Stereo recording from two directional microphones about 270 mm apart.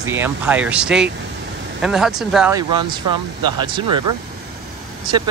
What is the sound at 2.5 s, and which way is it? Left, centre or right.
Speech, centre.